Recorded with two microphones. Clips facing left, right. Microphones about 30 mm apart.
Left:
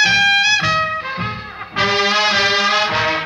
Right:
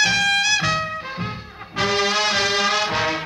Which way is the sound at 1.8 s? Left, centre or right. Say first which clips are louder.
Left 4 dB; left.